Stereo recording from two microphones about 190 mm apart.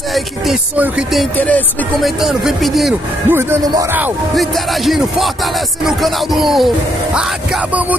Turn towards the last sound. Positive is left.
turn(degrees=-5)  # may be behind; listen again after turning